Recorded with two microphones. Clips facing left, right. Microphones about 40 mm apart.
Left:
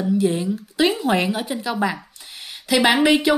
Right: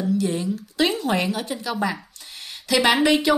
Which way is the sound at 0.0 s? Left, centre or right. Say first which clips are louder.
Left 3 dB; left.